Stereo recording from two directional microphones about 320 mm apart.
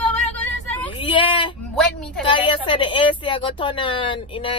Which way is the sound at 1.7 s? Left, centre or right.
Centre.